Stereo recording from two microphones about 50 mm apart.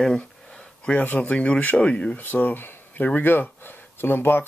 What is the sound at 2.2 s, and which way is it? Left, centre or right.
Speech, left.